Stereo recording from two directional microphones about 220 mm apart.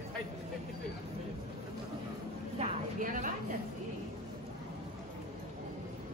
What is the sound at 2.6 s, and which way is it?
Vehicle, 35° right (ahead or behind).